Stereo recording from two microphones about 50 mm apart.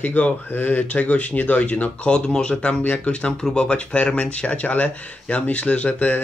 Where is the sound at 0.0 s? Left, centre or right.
Left.